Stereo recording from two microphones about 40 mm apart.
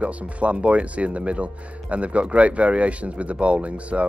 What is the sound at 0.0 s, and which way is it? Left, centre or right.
Speech, right.